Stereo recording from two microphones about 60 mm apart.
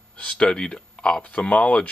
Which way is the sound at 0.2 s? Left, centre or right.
Centre.